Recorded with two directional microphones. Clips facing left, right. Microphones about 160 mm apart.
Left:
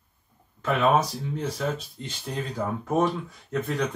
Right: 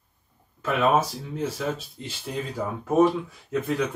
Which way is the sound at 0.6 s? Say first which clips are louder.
Even; 5° right (ahead or behind).